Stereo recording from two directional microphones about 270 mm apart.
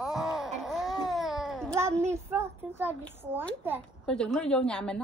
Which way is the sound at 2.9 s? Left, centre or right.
Centre.